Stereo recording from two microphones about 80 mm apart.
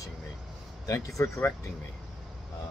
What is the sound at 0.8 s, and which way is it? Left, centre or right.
Speech, left.